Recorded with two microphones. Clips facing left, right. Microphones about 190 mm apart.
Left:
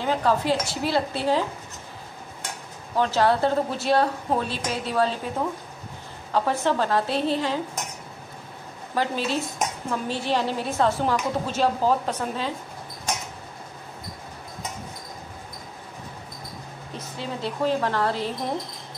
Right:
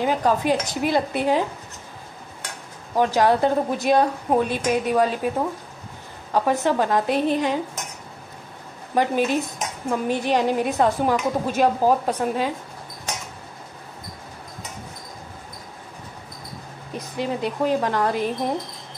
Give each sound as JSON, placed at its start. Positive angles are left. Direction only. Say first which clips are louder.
{"t": 0.0, "sound": "a woman's voice", "louder": "right 2 dB", "side_deg": -15}
{"t": 3.0, "sound": "a woman's voice", "louder": "right 3 dB", "side_deg": -15}
{"t": 6.3, "sound": "a woman's voice", "louder": "right 3 dB", "side_deg": -15}
{"t": 8.9, "sound": "a woman's voice", "louder": "right 5 dB", "side_deg": -15}
{"t": 16.9, "sound": "a woman's voice", "louder": "right 6 dB", "side_deg": -15}